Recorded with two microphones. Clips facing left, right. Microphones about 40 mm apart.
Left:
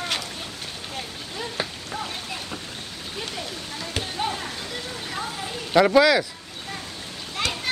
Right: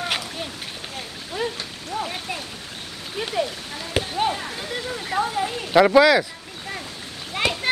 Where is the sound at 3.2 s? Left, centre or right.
Centre.